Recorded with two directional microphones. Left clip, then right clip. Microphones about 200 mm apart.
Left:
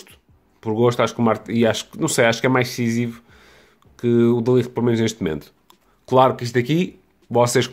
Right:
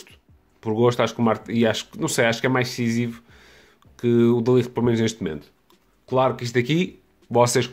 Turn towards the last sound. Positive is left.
turn(degrees=0)  # may be behind; listen again after turning